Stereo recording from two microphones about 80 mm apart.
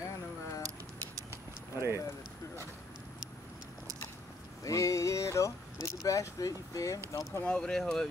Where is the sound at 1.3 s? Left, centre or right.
Right.